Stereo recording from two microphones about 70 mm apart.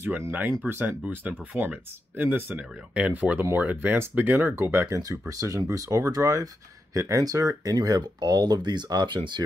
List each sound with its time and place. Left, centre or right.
0.3 s speech: right
4.6 s speech: right
4.9 s speech: right
7.7 s speech: right